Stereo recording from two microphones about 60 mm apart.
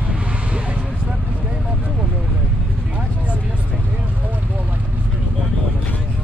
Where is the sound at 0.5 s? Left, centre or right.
Centre.